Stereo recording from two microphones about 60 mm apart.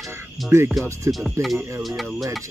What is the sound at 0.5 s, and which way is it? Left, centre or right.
Speech, right.